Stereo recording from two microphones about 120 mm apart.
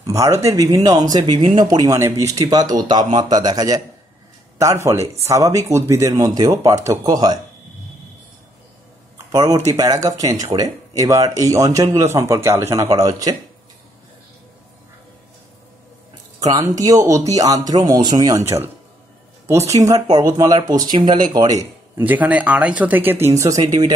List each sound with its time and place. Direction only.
0.0 s speech: 25° right (ahead or behind)
9.3 s speech: 30° right (ahead or behind)
10.5 s speech: 40° right (ahead or behind)
11.0 s speech: 30° right (ahead or behind)
16.3 s speech: 35° right (ahead or behind)
22.0 s speech: 15° right (ahead or behind)